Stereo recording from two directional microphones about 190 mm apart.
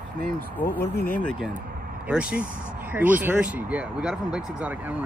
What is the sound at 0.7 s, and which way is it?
Speech, 55° left (ahead or behind).